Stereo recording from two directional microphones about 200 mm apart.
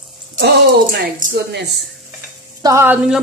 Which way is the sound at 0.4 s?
55° right (ahead or behind).